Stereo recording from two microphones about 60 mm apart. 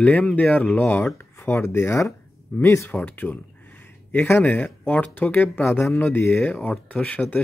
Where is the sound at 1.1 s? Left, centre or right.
Left.